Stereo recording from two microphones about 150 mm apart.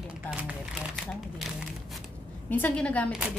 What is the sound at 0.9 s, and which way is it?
Speech, centre (ahead or behind).